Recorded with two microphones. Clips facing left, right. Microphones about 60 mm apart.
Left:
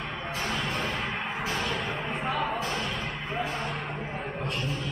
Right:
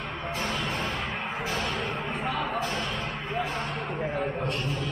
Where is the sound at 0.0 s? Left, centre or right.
Centre.